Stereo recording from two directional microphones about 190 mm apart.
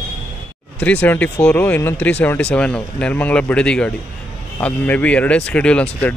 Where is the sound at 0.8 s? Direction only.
10° left (ahead or behind).